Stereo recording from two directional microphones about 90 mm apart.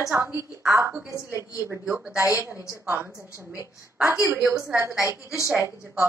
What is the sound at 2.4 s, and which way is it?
Speech, 30° right (ahead or behind).